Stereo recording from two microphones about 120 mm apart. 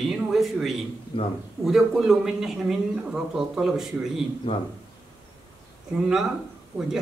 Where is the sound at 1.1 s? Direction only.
45° left (ahead or behind).